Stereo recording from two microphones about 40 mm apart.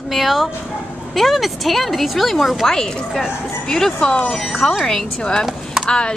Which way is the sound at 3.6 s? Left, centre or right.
Centre.